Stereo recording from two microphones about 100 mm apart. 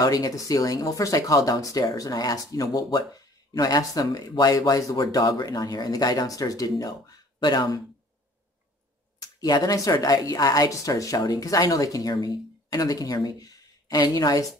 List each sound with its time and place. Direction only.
0.0 s speech: 40° left (ahead or behind)
9.2 s speech: 40° left (ahead or behind)